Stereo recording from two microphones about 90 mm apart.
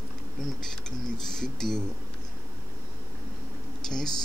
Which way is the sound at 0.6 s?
5° left (ahead or behind).